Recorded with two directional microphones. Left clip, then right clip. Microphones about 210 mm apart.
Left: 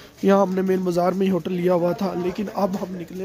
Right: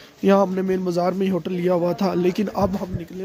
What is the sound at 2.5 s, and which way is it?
Speech, 25° right (ahead or behind).